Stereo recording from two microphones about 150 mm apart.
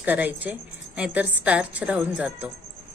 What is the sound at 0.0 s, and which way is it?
A woman's voice, 10° right (ahead or behind).